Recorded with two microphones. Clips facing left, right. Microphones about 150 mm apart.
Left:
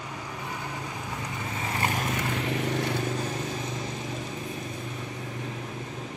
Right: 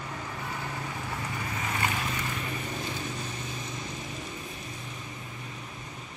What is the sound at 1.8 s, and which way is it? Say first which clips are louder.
Vehicle: left 5 dB; 45° left (ahead or behind).